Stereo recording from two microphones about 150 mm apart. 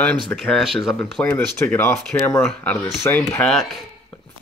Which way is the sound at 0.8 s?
25° left (ahead or behind).